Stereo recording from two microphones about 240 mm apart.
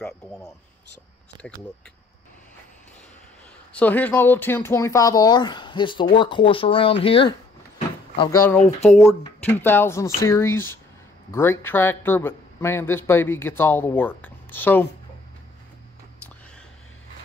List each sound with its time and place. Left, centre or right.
3.7 s speech: centre